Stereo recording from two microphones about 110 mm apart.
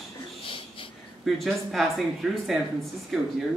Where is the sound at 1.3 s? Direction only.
Centre (ahead or behind).